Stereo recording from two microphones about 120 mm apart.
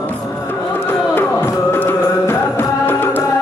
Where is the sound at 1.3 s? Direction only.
20° left (ahead or behind).